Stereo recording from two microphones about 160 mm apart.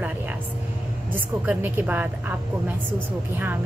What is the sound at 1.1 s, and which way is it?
A woman's voice, 10° right (ahead or behind).